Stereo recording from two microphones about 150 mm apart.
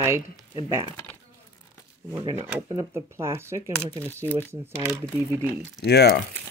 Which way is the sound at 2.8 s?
20° right (ahead or behind).